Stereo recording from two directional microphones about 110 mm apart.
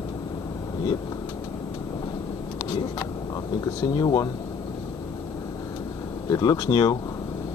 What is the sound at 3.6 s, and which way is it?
Speech, 35° left (ahead or behind).